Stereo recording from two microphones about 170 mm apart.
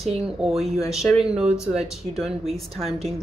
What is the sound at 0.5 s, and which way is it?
Speech, centre (ahead or behind).